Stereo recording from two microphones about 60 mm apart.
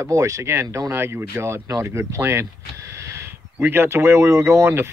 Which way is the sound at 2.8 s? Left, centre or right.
Right.